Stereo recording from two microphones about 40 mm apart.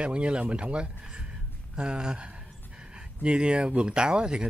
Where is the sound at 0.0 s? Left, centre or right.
Right.